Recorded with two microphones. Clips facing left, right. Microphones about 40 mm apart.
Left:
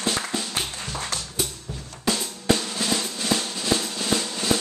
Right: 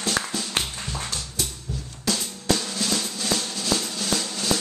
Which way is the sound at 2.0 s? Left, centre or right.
Centre.